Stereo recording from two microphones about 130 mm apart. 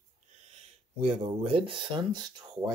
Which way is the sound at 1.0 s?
50° right (ahead or behind).